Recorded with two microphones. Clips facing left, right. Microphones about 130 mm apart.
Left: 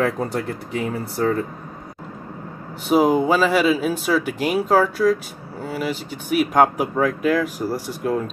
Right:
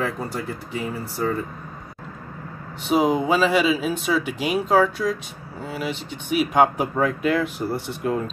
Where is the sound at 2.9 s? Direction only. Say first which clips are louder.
Left 3 dB; centre (ahead or behind).